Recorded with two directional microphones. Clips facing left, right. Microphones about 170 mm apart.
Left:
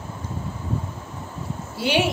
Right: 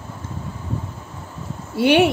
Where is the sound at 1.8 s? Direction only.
60° right (ahead or behind).